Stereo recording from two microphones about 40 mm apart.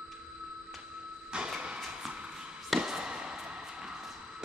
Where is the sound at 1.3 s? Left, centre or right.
Centre.